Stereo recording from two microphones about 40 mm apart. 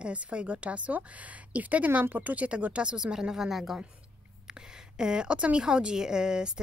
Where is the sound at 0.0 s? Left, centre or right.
Right; by 3.8 s centre.